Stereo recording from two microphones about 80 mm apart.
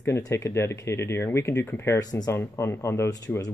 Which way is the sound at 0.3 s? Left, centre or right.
Left.